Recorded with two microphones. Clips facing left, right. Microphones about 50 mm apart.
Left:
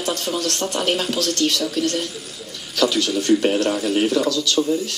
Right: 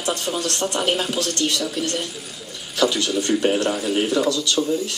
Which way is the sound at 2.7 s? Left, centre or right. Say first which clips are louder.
Left 1 dB; centre.